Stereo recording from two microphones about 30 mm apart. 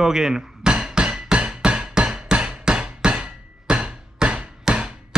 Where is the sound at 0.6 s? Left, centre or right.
Right.